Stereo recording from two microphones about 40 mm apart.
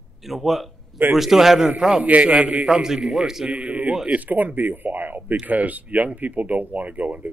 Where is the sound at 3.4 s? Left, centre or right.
Right.